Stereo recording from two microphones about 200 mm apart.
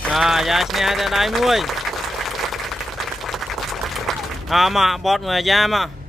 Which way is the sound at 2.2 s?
Centre (ahead or behind).